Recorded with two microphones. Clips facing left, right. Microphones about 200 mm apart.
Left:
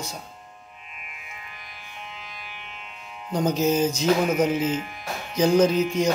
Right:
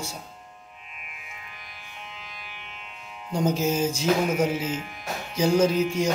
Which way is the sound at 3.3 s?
5° right (ahead or behind).